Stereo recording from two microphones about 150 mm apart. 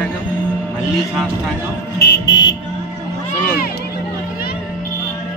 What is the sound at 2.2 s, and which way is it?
Music, 30° left (ahead or behind).